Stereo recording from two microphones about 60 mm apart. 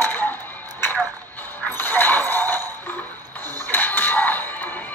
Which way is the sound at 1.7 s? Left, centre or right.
Left.